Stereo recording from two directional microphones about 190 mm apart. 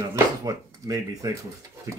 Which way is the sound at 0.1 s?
20° right (ahead or behind).